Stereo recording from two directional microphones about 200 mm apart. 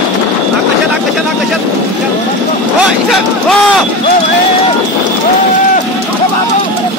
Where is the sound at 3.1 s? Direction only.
Centre (ahead or behind).